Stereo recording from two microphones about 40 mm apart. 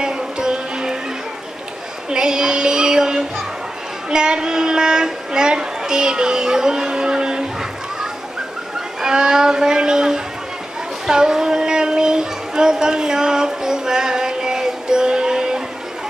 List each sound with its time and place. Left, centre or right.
0.0 s music: centre
2.0 s child singing: centre
4.1 s a woman's voice: centre
8.7 s speech: centre
11.1 s child singing: centre